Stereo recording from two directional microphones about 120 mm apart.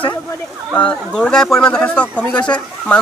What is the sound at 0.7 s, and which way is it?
Speech, 10° left (ahead or behind).